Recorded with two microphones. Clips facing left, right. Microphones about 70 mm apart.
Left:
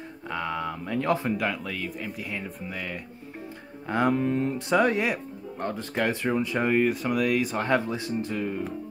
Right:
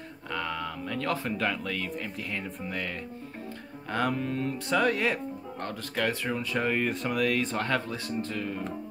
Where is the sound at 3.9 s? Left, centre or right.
Centre.